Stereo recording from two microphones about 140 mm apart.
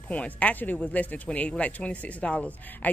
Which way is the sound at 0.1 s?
10° left (ahead or behind).